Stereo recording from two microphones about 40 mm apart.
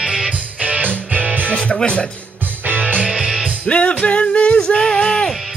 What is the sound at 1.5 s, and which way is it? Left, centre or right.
Speech, left.